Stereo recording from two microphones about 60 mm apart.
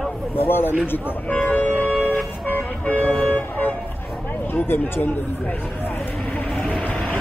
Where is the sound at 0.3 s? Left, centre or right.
Left.